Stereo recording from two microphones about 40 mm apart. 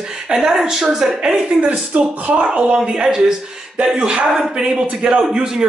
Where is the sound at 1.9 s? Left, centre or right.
Right.